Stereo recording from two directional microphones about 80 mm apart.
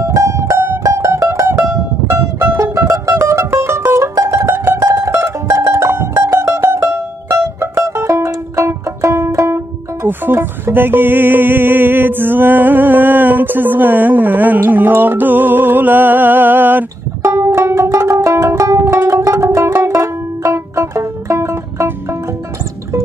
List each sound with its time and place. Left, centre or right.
0.0 s music: right
4.4 s music: right
4.7 s mandolin: right
10.0 s music: right